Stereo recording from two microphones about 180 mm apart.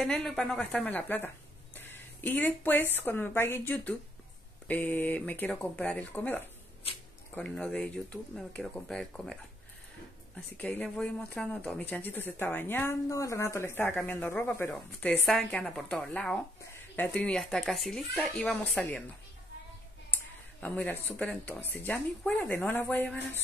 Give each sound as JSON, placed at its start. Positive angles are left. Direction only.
{"t": 0.0, "sound": "speech", "side_deg": 5}
{"t": 6.8, "sound": "speech", "side_deg": 30}
{"t": 7.3, "sound": "speech", "side_deg": 5}
{"t": 10.6, "sound": "speech", "side_deg": 5}
{"t": 20.6, "sound": "speech", "side_deg": 10}